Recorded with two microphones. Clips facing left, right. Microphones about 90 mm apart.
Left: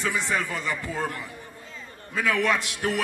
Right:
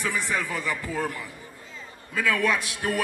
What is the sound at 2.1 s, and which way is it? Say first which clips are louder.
Speech: even; 20° left (ahead or behind).